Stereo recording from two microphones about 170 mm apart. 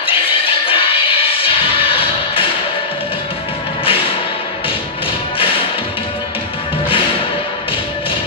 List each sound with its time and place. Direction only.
0.0 s music: 30° left (ahead or behind)